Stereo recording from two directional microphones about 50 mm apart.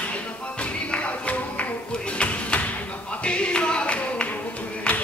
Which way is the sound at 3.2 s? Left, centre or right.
Left.